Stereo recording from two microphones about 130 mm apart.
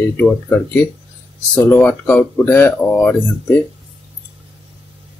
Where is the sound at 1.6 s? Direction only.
10° left (ahead or behind).